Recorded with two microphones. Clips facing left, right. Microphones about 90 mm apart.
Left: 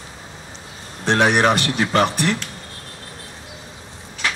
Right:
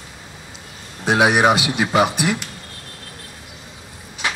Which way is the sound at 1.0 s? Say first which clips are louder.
Right 1 dB; 10° right (ahead or behind).